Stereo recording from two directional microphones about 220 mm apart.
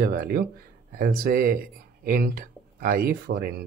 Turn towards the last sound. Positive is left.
turn(degrees=-45)  # may be behind; listen again after turning